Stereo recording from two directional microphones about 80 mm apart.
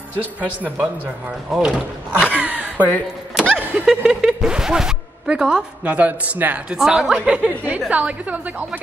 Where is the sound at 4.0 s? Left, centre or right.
Centre.